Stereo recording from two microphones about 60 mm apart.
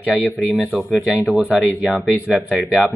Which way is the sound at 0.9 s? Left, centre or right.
Centre.